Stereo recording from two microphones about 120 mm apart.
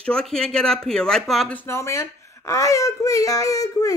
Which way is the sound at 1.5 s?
20° left (ahead or behind).